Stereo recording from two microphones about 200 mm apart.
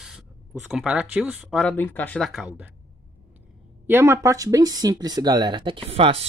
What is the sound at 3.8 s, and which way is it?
Speech, 10° right (ahead or behind).